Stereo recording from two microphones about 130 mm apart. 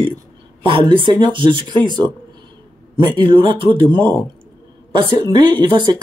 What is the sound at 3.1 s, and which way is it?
Speech, 40° right (ahead or behind).